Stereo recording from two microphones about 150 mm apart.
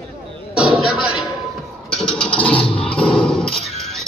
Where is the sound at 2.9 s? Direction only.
5° left (ahead or behind).